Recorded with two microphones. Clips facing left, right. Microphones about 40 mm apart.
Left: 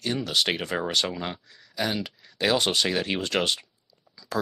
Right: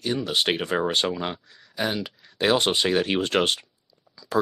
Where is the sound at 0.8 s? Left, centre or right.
Right.